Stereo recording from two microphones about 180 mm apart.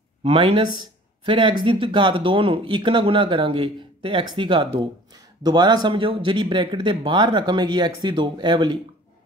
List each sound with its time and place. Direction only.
0.2 s speech: 35° right (ahead or behind)